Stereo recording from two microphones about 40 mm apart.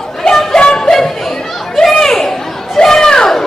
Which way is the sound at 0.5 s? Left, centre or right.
Left.